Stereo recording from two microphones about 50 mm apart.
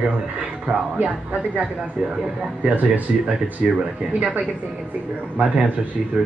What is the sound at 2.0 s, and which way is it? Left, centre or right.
Speech, centre.